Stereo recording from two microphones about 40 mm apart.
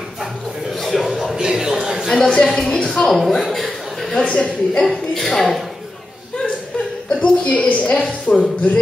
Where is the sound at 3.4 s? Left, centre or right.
Centre.